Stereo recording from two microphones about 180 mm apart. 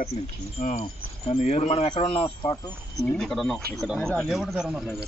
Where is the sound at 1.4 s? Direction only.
35° left (ahead or behind).